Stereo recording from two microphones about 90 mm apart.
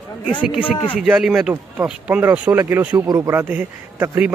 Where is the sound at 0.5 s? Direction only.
75° left (ahead or behind).